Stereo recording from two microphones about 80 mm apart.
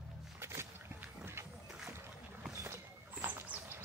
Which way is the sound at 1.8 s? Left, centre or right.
Right.